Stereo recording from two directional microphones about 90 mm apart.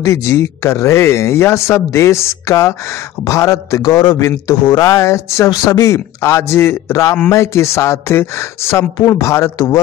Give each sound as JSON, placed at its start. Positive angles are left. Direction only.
{"t": 0.0, "sound": "speech", "side_deg": 35}